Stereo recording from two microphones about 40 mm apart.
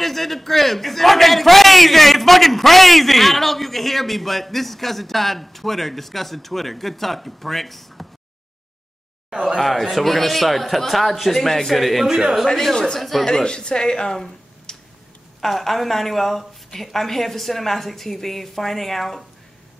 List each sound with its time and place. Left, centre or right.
0.0 s a man's voice: centre
9.6 s a man's voice: centre
12.1 s speech: centre
12.7 s a woman's voice: centre
14.1 s a sound: centre
15.4 s a man's voice: centre